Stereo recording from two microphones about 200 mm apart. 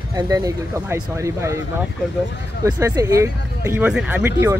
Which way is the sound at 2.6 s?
15° right (ahead or behind).